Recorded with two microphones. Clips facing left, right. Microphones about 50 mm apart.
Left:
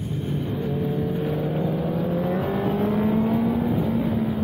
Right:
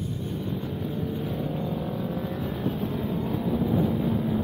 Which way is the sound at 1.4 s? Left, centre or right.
Left.